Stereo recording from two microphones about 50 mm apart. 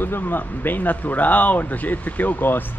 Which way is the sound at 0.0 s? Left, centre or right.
Left.